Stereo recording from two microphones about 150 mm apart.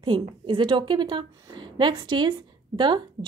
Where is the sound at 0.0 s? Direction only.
35° right (ahead or behind).